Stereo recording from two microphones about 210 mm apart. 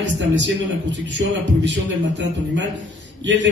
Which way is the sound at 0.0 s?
60° right (ahead or behind).